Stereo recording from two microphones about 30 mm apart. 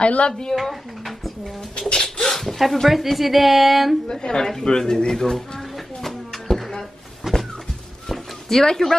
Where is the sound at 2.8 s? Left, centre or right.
Centre.